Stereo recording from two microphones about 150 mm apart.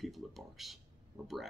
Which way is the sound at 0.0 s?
Centre (ahead or behind).